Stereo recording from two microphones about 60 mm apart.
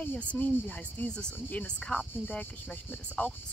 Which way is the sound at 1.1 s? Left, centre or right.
Centre.